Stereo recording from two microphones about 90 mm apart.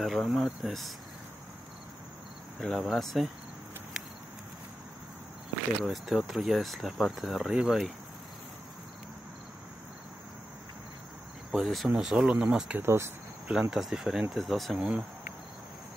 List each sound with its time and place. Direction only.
0.0 s speech: centre (ahead or behind)
2.6 s speech: centre (ahead or behind)
5.9 s speech: centre (ahead or behind)
11.5 s speech: centre (ahead or behind)
12.7 s speech: 30° right (ahead or behind)
13.5 s speech: 10° right (ahead or behind)